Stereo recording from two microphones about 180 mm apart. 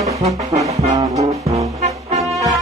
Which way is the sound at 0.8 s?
35° right (ahead or behind).